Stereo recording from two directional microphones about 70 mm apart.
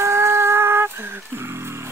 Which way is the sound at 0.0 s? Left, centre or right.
Right.